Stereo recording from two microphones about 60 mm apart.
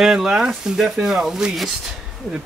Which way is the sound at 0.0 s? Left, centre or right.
Centre.